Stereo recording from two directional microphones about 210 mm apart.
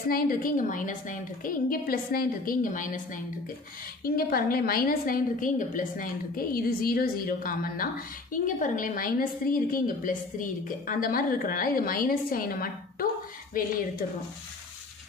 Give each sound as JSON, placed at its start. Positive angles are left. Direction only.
{"t": 0.1, "sound": "a woman's voice", "side_deg": 40}
{"t": 4.0, "sound": "a woman's voice", "side_deg": 45}